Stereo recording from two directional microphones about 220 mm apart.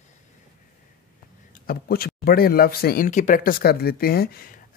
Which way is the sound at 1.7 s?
45° left (ahead or behind).